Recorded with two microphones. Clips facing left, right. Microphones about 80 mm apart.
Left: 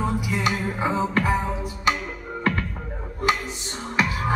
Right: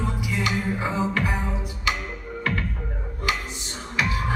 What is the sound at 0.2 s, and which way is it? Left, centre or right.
Music, left.